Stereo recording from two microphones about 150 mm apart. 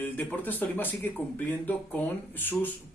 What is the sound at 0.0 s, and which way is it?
Speech, 10° left (ahead or behind).